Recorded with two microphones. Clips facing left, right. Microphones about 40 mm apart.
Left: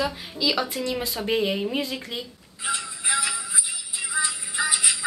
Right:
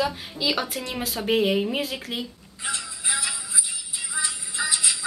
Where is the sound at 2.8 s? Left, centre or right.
Left.